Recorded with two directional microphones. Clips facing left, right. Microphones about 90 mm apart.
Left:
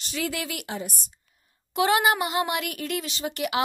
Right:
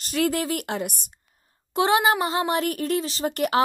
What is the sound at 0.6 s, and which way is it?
Speech, 65° right (ahead or behind).